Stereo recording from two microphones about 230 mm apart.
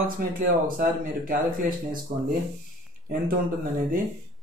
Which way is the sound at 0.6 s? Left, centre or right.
Right.